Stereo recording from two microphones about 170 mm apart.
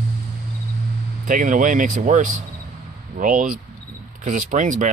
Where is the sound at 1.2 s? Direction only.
50° right (ahead or behind).